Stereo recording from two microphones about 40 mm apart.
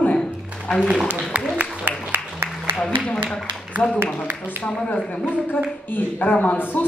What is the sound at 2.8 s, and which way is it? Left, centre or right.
Speech, left.